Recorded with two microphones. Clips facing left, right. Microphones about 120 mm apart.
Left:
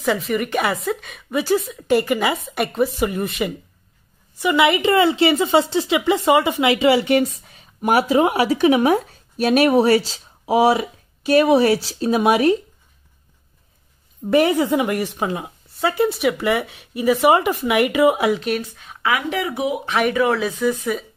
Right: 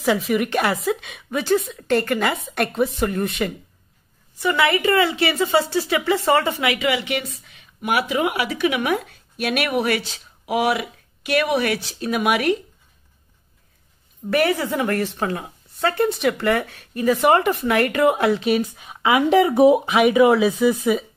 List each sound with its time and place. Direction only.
0.0 s a woman's voice: centre (ahead or behind)
4.4 s a woman's voice: 15° left (ahead or behind)
6.7 s a woman's voice: 30° left (ahead or behind)
14.2 s a woman's voice: 20° left (ahead or behind); by 18.6 s centre (ahead or behind)
18.6 s speech: 15° right (ahead or behind); by 19.8 s 30° right (ahead or behind)
19.8 s speech: 10° right (ahead or behind)